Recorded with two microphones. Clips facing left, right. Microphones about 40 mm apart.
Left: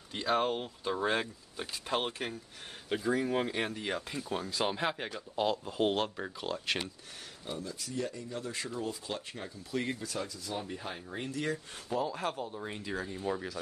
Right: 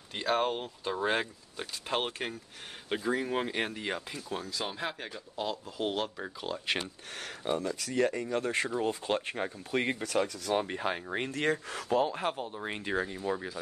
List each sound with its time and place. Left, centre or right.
0.3 s speech: centre
1.0 s speech: right
4.4 s speech: left
4.7 s speech: centre
5.3 s speech: left
6.1 s speech: centre
6.8 s speech: right
12.1 s speech: right
12.6 s speech: right
13.2 s speech: centre